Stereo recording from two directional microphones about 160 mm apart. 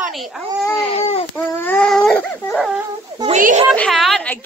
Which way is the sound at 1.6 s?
10° left (ahead or behind).